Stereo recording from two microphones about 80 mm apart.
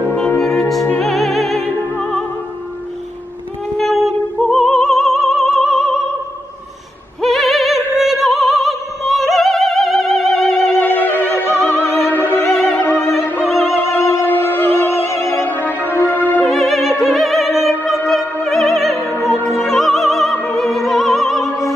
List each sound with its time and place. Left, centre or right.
0.4 s music: centre
2.0 s opera: centre
3.7 s opera: centre
7.2 s opera: centre
10.6 s opera: left
12.7 s music: left
13.4 s music: centre
13.9 s music: left
15.9 s music: left
16.4 s opera: centre